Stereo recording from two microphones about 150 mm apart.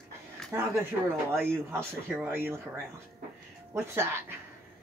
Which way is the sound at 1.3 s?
15° right (ahead or behind).